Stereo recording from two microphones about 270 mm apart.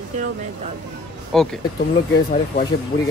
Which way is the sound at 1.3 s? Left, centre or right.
Centre.